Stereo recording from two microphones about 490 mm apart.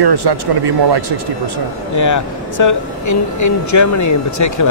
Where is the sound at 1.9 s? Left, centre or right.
Left.